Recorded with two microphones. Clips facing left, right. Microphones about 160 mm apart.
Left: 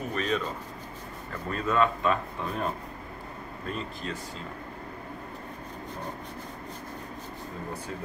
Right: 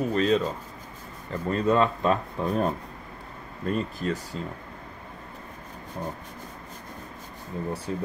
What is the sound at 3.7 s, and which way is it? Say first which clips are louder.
Speech: right 8 dB; 45° right (ahead or behind).